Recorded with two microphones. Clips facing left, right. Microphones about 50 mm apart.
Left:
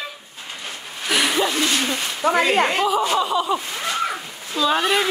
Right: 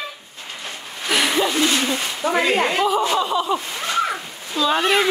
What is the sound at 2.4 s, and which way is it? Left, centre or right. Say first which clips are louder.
Speech: even; left.